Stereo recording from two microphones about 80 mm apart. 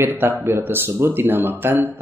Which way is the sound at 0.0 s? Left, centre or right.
Right.